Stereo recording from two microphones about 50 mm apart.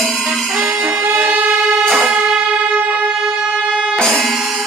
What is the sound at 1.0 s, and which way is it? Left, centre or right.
Music, right.